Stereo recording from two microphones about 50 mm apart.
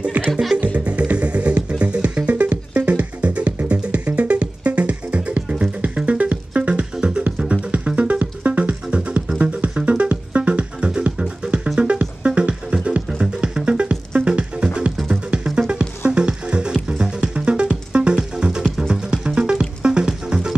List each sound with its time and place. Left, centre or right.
0.2 s music: right; by 12.0 s centre
12.0 s music: right